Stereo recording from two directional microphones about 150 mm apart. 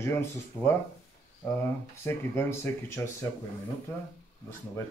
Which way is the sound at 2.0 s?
15° left (ahead or behind).